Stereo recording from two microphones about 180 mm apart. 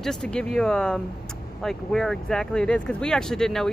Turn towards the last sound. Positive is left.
turn(degrees=5)  # may be behind; listen again after turning